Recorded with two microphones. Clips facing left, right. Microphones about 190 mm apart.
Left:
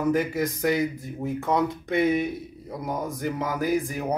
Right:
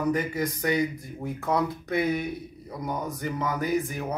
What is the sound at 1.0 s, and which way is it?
Speech, 25° left (ahead or behind).